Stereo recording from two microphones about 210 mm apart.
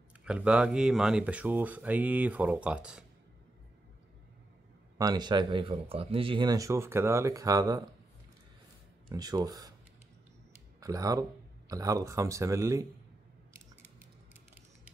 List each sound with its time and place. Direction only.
0.2 s speech: 5° right (ahead or behind)
4.9 s speech: 20° right (ahead or behind)
9.1 s speech: 20° right (ahead or behind)
10.8 s speech: 15° right (ahead or behind)